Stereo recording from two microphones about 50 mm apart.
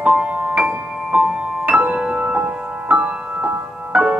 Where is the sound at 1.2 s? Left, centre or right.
Right.